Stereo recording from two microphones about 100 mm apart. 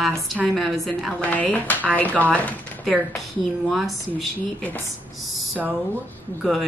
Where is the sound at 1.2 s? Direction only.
15° left (ahead or behind).